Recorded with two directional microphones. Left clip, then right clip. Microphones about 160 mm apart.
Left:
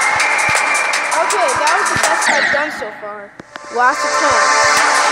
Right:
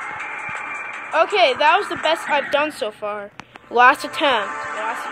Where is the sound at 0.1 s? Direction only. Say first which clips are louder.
Left 15 dB; 45° left (ahead or behind).